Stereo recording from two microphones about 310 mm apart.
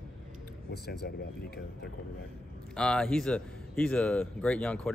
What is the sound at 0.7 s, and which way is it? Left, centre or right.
Speech, left.